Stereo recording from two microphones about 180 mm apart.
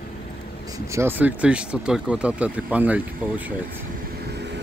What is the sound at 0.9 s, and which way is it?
Speech, 10° right (ahead or behind).